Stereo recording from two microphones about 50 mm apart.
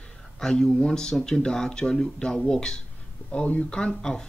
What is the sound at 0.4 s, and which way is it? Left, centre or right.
Speech, centre.